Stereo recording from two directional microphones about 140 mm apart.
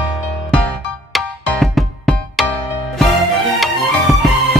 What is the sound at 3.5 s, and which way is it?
Music, centre (ahead or behind).